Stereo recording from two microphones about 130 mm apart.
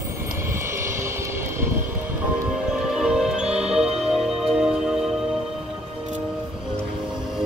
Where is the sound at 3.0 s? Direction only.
5° right (ahead or behind).